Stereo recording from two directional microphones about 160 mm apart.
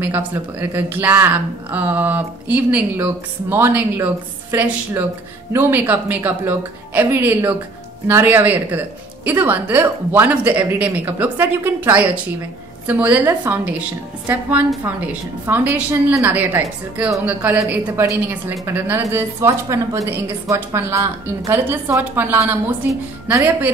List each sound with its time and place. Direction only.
0.0 s a woman's voice: 10° right (ahead or behind)